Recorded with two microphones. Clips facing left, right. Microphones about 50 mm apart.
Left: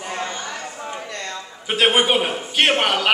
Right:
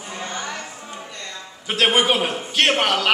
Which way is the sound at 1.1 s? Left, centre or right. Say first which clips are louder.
Left 5 dB; left.